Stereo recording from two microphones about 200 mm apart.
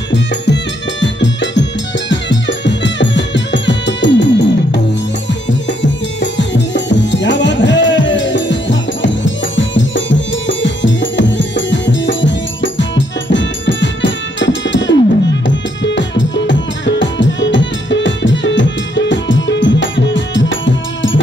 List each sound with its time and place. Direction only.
1.0 s music: 65° left (ahead or behind)